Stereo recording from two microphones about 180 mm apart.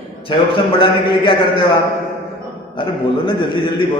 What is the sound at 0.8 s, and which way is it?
Speech, 30° left (ahead or behind).